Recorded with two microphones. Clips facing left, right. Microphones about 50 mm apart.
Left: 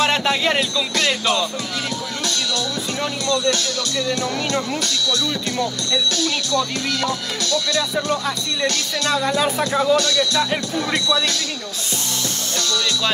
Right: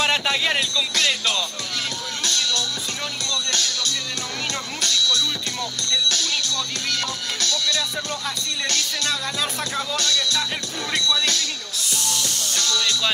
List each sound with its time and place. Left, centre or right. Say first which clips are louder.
0.0 s music: left 3 dB; centre
0.9 s music: left 4 dB; centre
3.3 s speech: left 7 dB; left
5.0 s speech: left 2 dB; left
7.5 s music: left 6 dB; left
9.1 s music: left 7 dB; centre
12.5 s music: left 1 dB; left